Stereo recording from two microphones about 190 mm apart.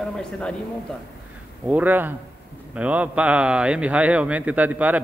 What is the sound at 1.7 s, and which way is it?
A man's voice, 10° right (ahead or behind).